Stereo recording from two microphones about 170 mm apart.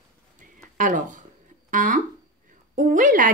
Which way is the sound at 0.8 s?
50° right (ahead or behind).